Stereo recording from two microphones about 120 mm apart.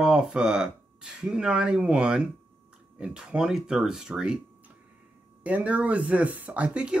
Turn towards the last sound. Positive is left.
turn(degrees=-10)  # may be behind; listen again after turning